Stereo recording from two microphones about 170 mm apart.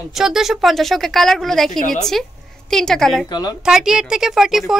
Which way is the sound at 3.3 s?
25° left (ahead or behind).